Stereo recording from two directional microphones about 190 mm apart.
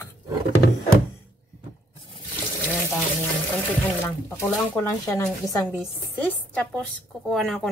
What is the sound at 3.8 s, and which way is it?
Speech, 10° left (ahead or behind).